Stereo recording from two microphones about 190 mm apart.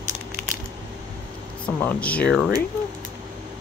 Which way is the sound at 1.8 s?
10° left (ahead or behind).